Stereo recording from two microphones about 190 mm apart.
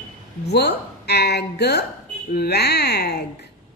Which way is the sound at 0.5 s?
60° left (ahead or behind).